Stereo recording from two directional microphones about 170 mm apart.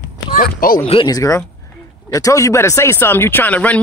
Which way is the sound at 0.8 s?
35° left (ahead or behind).